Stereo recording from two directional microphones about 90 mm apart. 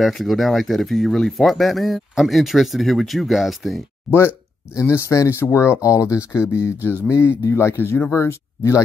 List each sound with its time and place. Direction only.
0.0 s speech: centre (ahead or behind)
4.7 s speech: 30° left (ahead or behind)